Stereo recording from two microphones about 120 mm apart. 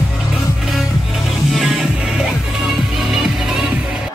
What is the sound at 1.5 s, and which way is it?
Music, 5° right (ahead or behind).